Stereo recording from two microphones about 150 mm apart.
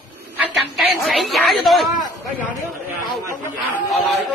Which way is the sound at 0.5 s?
Centre (ahead or behind).